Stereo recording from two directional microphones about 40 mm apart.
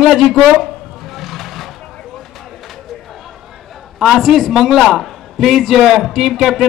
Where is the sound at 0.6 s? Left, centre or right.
Centre.